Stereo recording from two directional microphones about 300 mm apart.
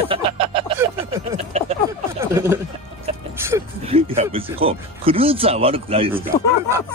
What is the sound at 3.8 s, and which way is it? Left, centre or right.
Speech, centre.